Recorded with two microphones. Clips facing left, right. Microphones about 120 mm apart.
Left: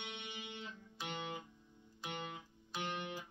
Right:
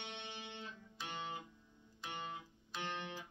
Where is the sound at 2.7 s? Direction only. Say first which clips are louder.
Left 2 dB; 10° left (ahead or behind).